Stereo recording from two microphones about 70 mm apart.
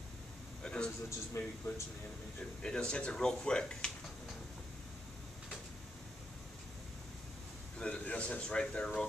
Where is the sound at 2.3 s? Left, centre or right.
Centre.